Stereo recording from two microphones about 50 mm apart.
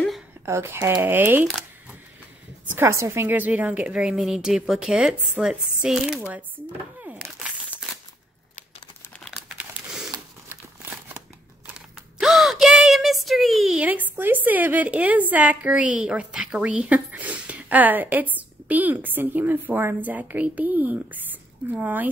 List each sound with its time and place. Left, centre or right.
0.7 s speech: right
1.0 s a woman's voice: right
2.8 s a woman's voice: right
3.3 s a woman's voice: right
4.2 s speech: centre
5.4 s a sound: centre
5.9 s speech: centre
9.8 s a sound: right
12.2 s a sound: centre
13.7 s a woman's voice: right